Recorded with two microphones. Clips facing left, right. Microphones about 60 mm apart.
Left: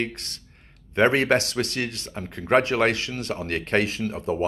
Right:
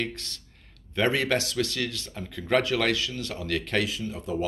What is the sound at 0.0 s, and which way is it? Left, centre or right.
Speech, left.